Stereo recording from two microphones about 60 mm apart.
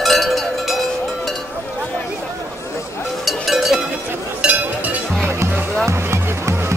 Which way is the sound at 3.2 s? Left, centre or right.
Centre.